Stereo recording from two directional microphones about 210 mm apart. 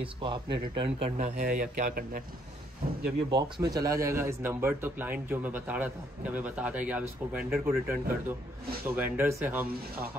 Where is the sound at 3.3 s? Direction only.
20° right (ahead or behind).